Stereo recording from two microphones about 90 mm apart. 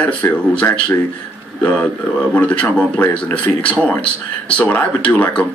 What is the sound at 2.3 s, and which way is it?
Speech, 15° left (ahead or behind).